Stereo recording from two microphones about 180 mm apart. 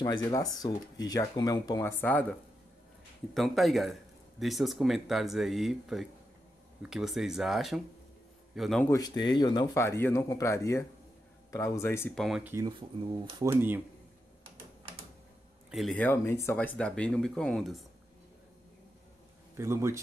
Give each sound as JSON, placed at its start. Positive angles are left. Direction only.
{"t": 0.0, "sound": "speech", "side_deg": 20}
{"t": 3.3, "sound": "speech", "side_deg": 0}
{"t": 9.2, "sound": "speech", "side_deg": 25}
{"t": 12.2, "sound": "speech", "side_deg": 0}
{"t": 12.4, "sound": "a man's voice", "side_deg": -15}
{"t": 15.7, "sound": "speech", "side_deg": 0}
{"t": 19.5, "sound": "a man's voice", "side_deg": -15}